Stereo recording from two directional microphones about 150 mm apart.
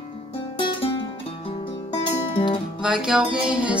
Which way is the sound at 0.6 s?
35° left (ahead or behind).